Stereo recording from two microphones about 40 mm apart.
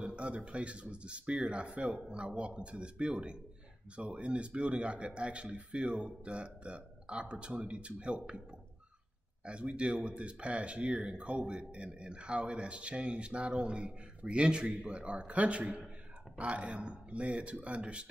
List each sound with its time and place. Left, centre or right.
0.0 s a sound: right
0.5 s speech: right
9.4 s speech: right